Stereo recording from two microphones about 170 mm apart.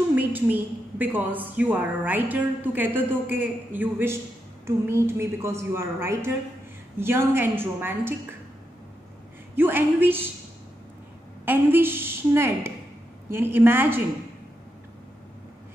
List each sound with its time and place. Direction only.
0.1 s a woman's voice: 10° right (ahead or behind)
9.6 s a woman's voice: 10° right (ahead or behind)
11.4 s a woman's voice: 10° right (ahead or behind)